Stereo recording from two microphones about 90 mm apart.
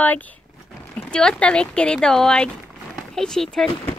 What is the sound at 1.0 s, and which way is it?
Speech, 10° left (ahead or behind).